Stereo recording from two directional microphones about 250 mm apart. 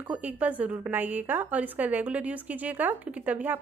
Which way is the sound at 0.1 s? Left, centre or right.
Centre.